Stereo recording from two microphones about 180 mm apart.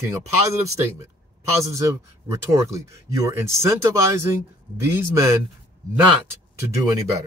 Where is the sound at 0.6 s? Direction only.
15° right (ahead or behind).